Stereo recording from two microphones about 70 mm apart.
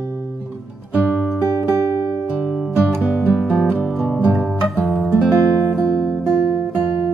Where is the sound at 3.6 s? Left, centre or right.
Right.